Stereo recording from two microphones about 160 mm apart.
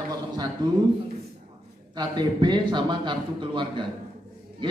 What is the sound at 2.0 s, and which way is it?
Speech, 25° right (ahead or behind).